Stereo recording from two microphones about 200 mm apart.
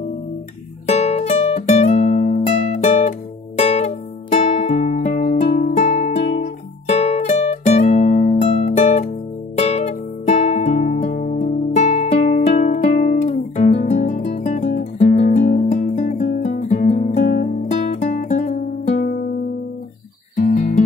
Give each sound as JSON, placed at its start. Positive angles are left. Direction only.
{"t": 0.8, "sound": "music", "side_deg": 35}
{"t": 20.3, "sound": "music", "side_deg": 40}